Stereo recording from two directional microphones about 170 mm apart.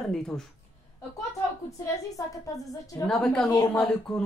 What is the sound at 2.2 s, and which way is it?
Speech, 20° left (ahead or behind).